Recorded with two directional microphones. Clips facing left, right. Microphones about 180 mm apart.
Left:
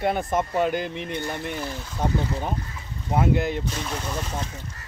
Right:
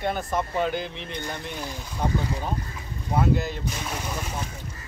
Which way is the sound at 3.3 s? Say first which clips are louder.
Left 2 dB; 60° left (ahead or behind).